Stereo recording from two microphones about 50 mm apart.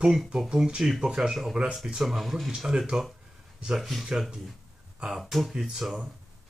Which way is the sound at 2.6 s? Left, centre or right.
Centre.